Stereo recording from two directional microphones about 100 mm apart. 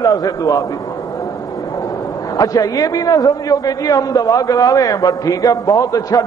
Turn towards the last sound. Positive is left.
turn(degrees=35)  # may be behind; listen again after turning